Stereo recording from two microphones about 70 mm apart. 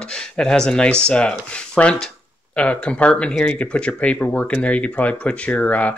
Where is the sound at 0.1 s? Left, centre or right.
Centre.